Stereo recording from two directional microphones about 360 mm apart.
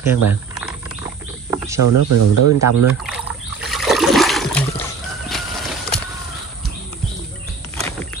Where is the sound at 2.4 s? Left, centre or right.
Right.